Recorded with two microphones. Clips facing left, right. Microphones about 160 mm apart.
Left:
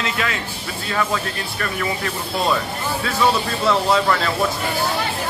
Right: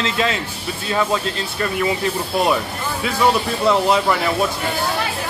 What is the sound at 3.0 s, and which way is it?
Speech, 15° right (ahead or behind).